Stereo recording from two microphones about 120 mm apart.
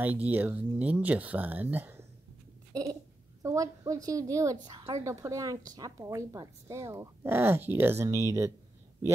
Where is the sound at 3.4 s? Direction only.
25° right (ahead or behind).